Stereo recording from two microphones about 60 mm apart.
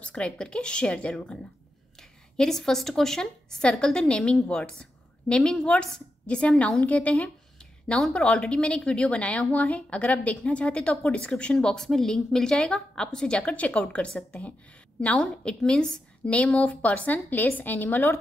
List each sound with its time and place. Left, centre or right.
0.0 s a woman's voice: centre
8.1 s a woman's voice: centre; by 18.2 s left